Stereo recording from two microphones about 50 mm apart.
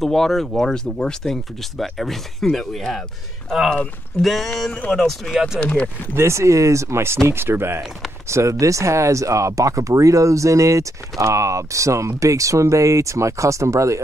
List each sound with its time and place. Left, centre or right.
0.0 s speech: centre
4.2 s speech: centre
5.6 s speech: left
6.1 s speech: right
7.2 s speech: right
8.3 s speech: right